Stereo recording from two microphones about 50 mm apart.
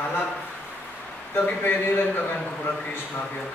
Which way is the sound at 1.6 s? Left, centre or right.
Left.